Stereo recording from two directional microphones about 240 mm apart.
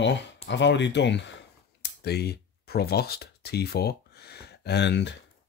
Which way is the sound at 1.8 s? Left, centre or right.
Left.